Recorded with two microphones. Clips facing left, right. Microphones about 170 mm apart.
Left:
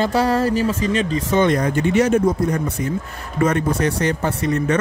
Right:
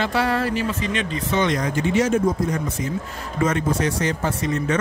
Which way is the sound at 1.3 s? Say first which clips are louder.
Left 4 dB; 55° left (ahead or behind).